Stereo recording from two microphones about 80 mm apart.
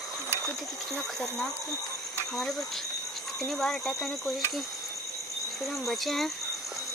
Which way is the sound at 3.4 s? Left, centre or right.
Centre.